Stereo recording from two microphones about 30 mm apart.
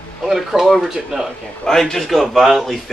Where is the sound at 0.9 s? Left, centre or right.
Centre.